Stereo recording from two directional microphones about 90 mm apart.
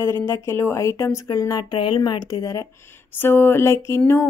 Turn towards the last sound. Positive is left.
turn(degrees=30)  # may be behind; listen again after turning